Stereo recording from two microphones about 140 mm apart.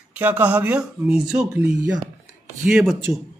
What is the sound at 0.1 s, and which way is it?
Speech, 10° right (ahead or behind).